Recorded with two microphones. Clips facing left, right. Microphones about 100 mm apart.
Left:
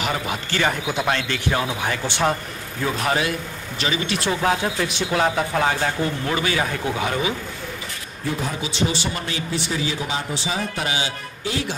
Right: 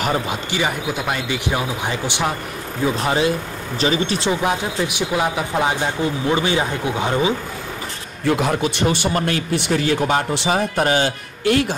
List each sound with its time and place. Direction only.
0.5 s speech: 10° right (ahead or behind)
3.0 s speech: 25° right (ahead or behind)
4.3 s speech: 15° right (ahead or behind)
8.3 s a man's voice: 70° right (ahead or behind)